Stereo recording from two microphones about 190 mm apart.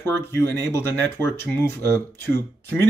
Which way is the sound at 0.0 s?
10° left (ahead or behind).